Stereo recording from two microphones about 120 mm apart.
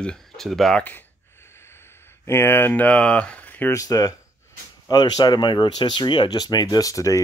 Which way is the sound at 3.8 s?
30° left (ahead or behind).